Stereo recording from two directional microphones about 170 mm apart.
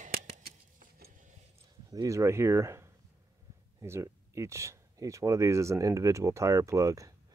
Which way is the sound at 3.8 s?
15° right (ahead or behind).